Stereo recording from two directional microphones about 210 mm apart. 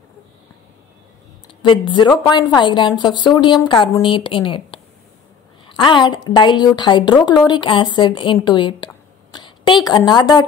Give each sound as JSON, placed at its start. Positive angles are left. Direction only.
{"t": 1.6, "sound": "a woman's voice", "side_deg": 20}